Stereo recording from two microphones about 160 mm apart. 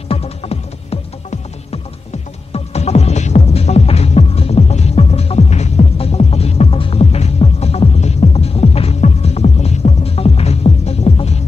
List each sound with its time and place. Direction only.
0.1 s music: 40° left (ahead or behind)